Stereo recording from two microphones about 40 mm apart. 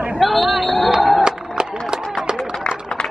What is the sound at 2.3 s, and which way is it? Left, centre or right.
Run, right.